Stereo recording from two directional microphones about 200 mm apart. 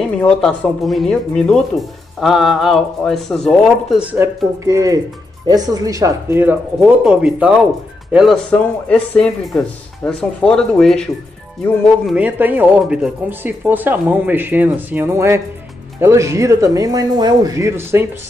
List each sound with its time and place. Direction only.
0.0 s speech: 5° left (ahead or behind)
4.2 s speech: 10° right (ahead or behind)
12.2 s speech: 10° right (ahead or behind)